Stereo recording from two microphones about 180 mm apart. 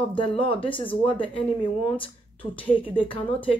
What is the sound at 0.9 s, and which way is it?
Speech, 10° left (ahead or behind).